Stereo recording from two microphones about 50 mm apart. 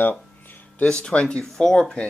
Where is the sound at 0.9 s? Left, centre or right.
Left.